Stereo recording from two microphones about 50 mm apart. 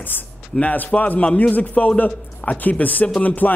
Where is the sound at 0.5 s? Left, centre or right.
Left.